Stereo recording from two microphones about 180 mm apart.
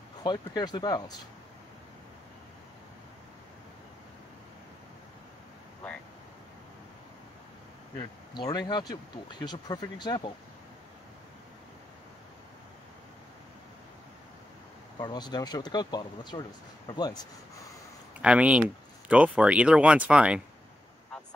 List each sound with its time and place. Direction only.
0.2 s speech: 25° left (ahead or behind)
8.4 s speech: 25° left (ahead or behind)
15.0 s speech: 25° left (ahead or behind)
18.2 s speech: 5° right (ahead or behind)